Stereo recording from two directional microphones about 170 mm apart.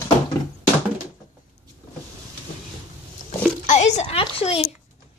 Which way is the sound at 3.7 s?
40° left (ahead or behind).